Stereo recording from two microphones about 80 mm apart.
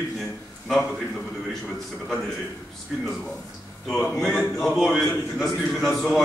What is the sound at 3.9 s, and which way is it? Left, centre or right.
A man's voice, centre.